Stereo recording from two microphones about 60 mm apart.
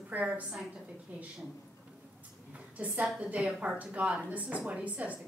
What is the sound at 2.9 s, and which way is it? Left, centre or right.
A woman's voice, right.